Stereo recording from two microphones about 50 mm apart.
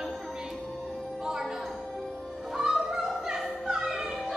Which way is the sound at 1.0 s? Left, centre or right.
Centre.